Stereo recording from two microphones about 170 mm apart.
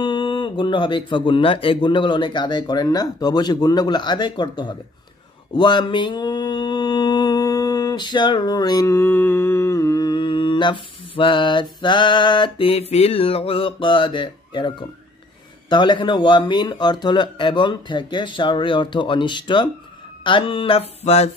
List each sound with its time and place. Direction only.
0.0 s speech: 25° left (ahead or behind)
5.5 s mantra: 25° left (ahead or behind)
15.7 s speech: 25° left (ahead or behind)
20.2 s a sound: 30° left (ahead or behind)